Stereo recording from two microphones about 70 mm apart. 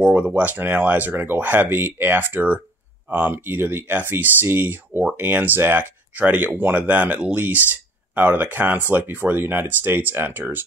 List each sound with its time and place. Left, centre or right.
0.0 s speech: right